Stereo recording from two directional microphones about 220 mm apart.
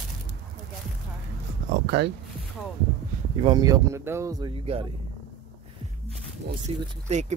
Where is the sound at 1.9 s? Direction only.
50° right (ahead or behind).